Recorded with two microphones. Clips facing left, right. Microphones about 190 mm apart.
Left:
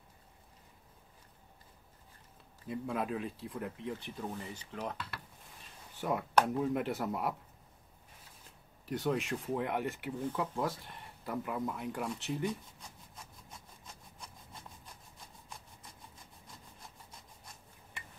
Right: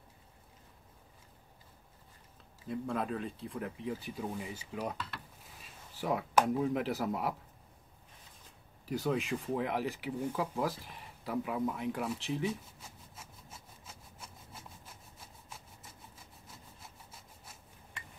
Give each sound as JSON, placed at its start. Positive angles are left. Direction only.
{"t": 2.7, "sound": "speech", "side_deg": 5}
{"t": 8.8, "sound": "speech", "side_deg": 0}
{"t": 15.1, "sound": "rub", "side_deg": -5}